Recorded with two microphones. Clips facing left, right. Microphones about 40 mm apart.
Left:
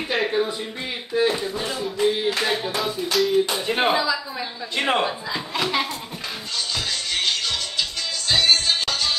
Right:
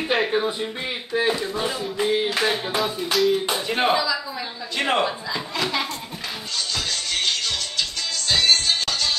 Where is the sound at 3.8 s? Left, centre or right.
Left.